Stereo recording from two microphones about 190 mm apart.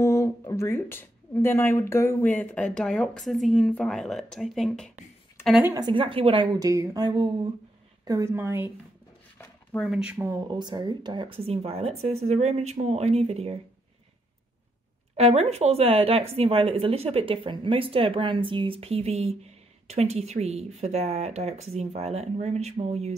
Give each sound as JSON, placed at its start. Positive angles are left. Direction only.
{"t": 0.0, "sound": "a woman's voice", "side_deg": 15}
{"t": 5.7, "sound": "a woman's voice", "side_deg": -20}
{"t": 9.4, "sound": "a sound", "side_deg": 10}
{"t": 9.8, "sound": "speech", "side_deg": -5}
{"t": 15.1, "sound": "speech", "side_deg": -35}